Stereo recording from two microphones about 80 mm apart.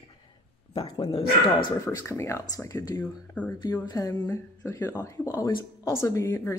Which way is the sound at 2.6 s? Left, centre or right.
Left.